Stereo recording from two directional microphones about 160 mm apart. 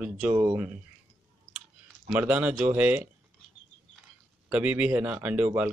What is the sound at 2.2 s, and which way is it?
Speech, 10° right (ahead or behind).